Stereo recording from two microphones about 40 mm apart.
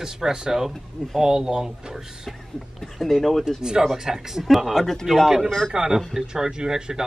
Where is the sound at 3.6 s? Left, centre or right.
Centre.